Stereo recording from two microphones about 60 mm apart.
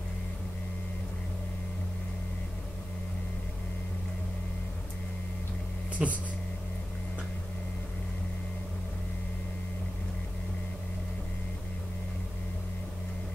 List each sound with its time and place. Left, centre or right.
6.0 s speech: centre